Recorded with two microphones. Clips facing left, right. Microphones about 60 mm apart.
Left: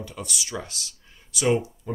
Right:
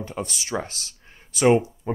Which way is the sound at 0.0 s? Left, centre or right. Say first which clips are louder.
Right 4 dB; right.